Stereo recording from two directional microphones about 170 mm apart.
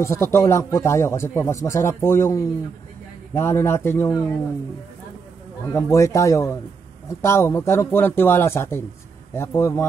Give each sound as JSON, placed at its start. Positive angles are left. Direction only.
{"t": 0.0, "sound": "speech", "side_deg": 15}
{"t": 5.7, "sound": "speech", "side_deg": 15}